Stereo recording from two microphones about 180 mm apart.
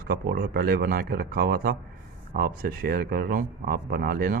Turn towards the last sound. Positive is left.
turn(degrees=-55)  # may be behind; listen again after turning